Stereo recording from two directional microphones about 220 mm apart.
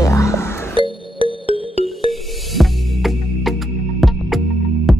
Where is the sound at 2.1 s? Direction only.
Centre (ahead or behind).